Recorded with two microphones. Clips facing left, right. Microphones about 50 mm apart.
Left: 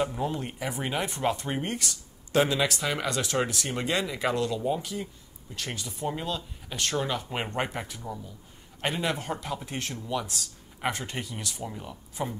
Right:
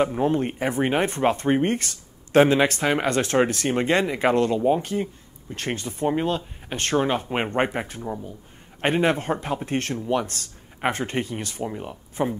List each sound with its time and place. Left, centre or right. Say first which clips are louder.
0.0 s speech: right 8 dB; right
9.9 s speech: right 7 dB; right
10.2 s speech: right 3 dB; right
10.8 s speech: right 7 dB; right